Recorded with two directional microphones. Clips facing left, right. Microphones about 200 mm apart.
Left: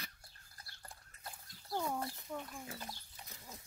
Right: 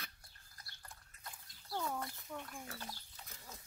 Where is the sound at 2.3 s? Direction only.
10° left (ahead or behind).